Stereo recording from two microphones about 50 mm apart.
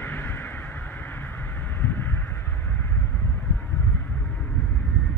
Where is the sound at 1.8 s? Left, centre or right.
Left.